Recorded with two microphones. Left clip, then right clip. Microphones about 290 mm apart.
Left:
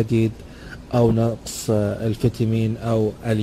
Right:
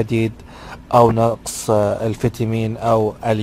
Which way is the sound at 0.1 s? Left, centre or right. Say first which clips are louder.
Right 1 dB; centre.